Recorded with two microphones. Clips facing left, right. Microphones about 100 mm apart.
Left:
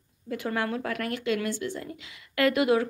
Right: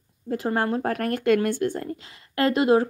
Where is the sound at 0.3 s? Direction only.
35° right (ahead or behind); by 1.9 s 50° right (ahead or behind).